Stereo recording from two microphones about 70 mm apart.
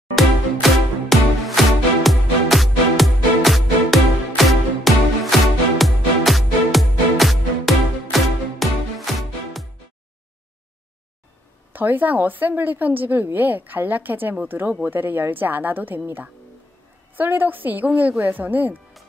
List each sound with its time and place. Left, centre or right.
0.1 s music: centre
11.7 s a woman's voice: right
17.1 s a woman's voice: right